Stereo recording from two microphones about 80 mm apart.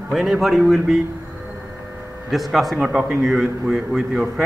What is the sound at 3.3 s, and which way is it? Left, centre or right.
Speech, centre.